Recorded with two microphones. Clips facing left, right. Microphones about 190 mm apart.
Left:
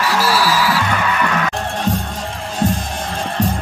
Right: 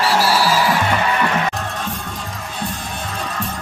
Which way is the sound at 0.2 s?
15° right (ahead or behind).